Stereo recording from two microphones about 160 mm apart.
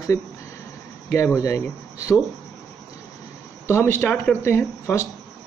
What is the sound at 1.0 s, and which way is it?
Speech, 15° left (ahead or behind).